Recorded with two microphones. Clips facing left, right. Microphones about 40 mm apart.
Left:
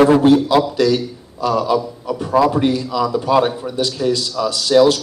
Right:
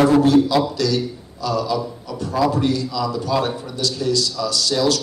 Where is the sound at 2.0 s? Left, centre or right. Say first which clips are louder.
Left 5 dB; left.